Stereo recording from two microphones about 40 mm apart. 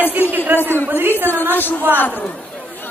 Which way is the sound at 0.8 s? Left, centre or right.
Right.